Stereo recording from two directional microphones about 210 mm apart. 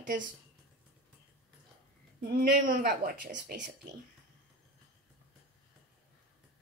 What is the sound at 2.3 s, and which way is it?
A woman's voice, 45° right (ahead or behind).